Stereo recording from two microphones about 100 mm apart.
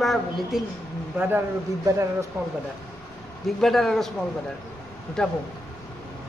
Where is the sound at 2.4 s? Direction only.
15° right (ahead or behind).